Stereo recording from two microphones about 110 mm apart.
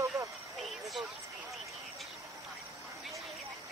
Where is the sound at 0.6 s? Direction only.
Centre (ahead or behind).